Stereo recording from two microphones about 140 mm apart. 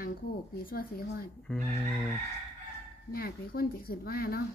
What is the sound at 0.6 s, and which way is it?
Speech, 90° left.